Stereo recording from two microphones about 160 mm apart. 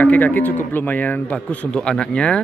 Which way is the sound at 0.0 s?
10° left (ahead or behind).